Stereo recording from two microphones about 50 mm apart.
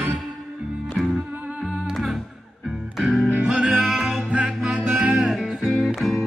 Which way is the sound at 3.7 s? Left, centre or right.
Centre.